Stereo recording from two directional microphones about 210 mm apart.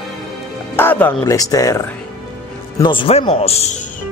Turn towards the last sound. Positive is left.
turn(degrees=30)  # may be behind; listen again after turning